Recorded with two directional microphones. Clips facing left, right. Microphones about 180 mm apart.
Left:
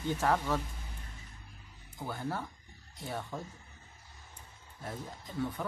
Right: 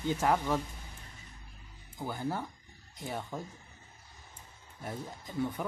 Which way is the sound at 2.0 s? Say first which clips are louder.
Right 2 dB; 15° right (ahead or behind).